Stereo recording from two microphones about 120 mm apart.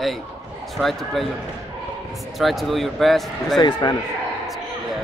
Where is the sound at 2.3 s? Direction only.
Centre (ahead or behind).